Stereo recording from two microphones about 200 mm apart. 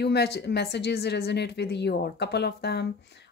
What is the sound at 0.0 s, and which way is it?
Speech, 55° left (ahead or behind).